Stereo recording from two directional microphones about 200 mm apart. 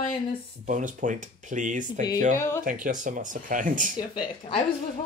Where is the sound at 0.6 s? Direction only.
40° right (ahead or behind).